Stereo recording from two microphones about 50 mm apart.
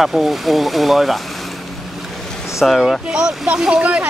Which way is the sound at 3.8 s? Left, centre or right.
Right.